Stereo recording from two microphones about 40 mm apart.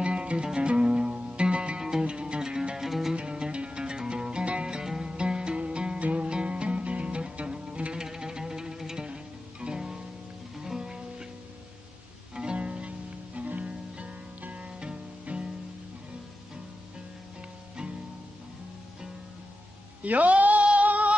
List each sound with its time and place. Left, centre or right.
0.0 s music: right; by 3.2 s centre
3.2 s music: right
12.5 s music: right
20.0 s music: right